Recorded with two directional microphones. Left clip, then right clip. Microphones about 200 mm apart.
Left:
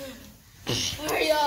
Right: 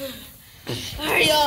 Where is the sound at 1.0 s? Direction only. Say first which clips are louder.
Right 10 dB; 45° right (ahead or behind).